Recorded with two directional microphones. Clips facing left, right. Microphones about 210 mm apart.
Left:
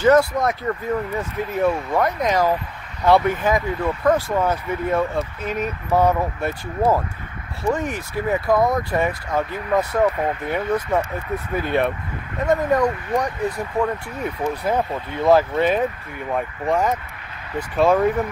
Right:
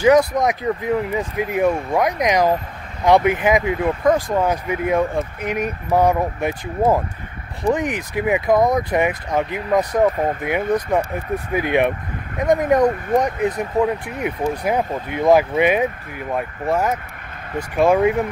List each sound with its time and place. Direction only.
0.0 s speech: 15° right (ahead or behind)
17.6 s speech: 10° right (ahead or behind)